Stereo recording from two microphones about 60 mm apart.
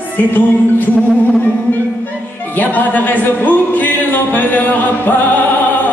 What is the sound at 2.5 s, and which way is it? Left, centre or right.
Music, left.